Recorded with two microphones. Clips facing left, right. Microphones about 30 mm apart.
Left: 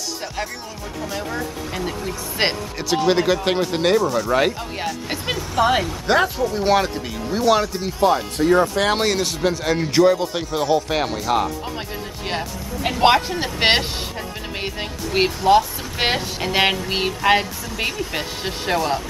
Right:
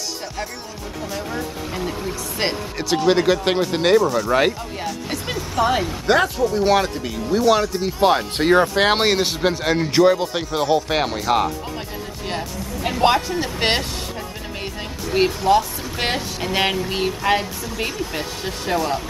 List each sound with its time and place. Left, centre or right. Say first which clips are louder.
1.1 s speech: even; centre
2.4 s speech: left 2 dB; left
2.8 s speech: right 1 dB; centre
5.1 s speech: left 1 dB; centre
8.0 s speech: even; right
8.7 s speech: right 2 dB; right; by 11.5 s centre
12.3 s speech: left 1 dB; centre
15.2 s speech: left 2 dB; centre